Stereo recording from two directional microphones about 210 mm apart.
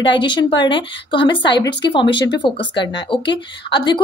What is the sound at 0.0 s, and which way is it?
A woman's voice, 20° left (ahead or behind).